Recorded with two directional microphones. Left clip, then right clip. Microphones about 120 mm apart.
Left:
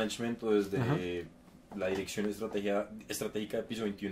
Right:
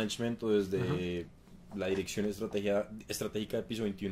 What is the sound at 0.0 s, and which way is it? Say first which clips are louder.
Speech: even; 45° right (ahead or behind).